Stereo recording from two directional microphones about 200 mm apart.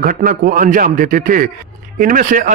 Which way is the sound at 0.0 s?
45° right (ahead or behind).